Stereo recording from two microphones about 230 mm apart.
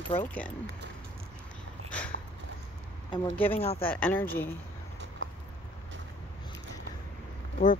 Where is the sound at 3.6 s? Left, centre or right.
Left.